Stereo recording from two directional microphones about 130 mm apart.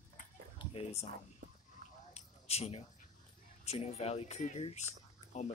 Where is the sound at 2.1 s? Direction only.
55° left (ahead or behind).